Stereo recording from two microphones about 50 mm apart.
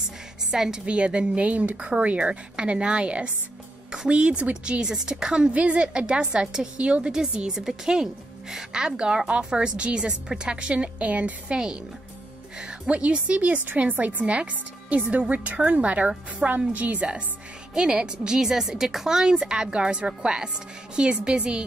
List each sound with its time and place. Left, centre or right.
0.5 s a woman's voice: centre; by 11.5 s right
11.5 s a woman's voice: centre
17.7 s a woman's voice: centre